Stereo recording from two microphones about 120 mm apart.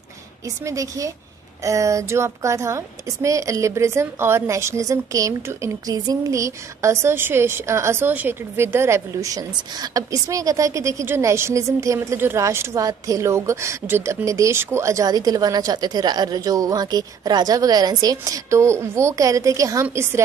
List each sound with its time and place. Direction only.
0.7 s a woman's voice: 25° right (ahead or behind)